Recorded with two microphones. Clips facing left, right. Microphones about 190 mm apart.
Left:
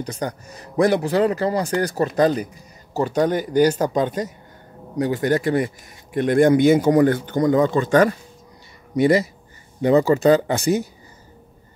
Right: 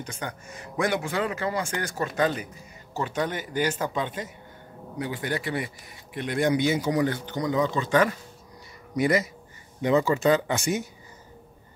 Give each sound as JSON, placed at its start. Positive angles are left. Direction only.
{"t": 0.0, "sound": "speech", "side_deg": 35}
{"t": 8.9, "sound": "a man's voice", "side_deg": 30}